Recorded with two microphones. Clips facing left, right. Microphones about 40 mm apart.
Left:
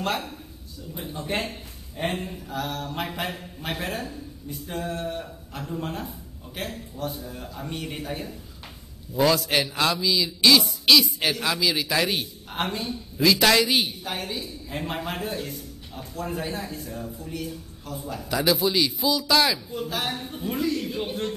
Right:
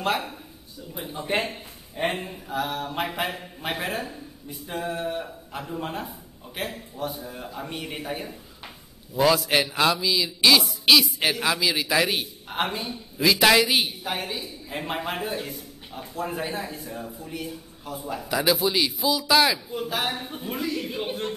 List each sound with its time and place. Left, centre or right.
0.0 s a man's voice: centre